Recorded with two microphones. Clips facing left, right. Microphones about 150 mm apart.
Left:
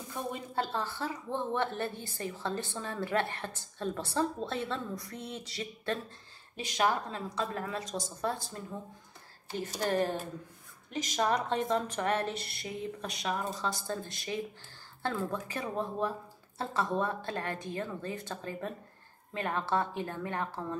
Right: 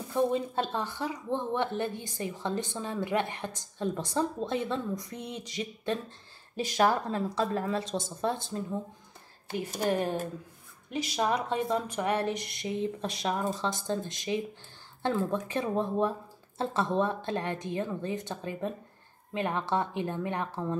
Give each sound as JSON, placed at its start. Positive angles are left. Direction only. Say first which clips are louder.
{"t": 0.1, "sound": "speech", "louder": "right 10 dB", "side_deg": -25}
{"t": 6.5, "sound": "speech", "louder": "right 4 dB", "side_deg": -40}
{"t": 9.8, "sound": "speech", "louder": "right 1 dB", "side_deg": -15}
{"t": 11.1, "sound": "speech", "louder": "right 1 dB", "side_deg": -10}